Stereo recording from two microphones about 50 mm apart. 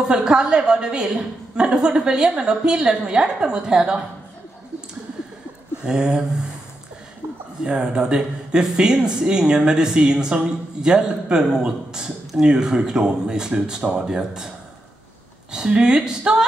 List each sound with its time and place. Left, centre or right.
0.0 s speech: centre
5.9 s speech: centre
7.6 s speech: centre
15.5 s speech: centre